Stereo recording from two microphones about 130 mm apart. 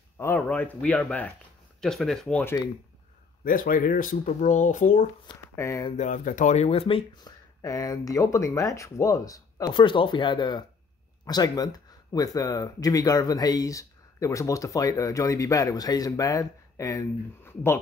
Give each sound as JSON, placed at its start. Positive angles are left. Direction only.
{"t": 0.2, "sound": "speech", "side_deg": 15}
{"t": 3.4, "sound": "speech", "side_deg": 90}
{"t": 5.6, "sound": "speech", "side_deg": 20}
{"t": 5.9, "sound": "speech", "side_deg": 85}
{"t": 7.6, "sound": "speech", "side_deg": 25}